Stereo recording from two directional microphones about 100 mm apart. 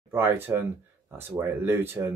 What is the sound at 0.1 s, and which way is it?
Speech, 20° right (ahead or behind).